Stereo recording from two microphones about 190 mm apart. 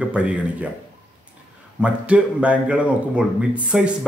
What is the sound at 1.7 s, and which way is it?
A man's voice, 5° right (ahead or behind).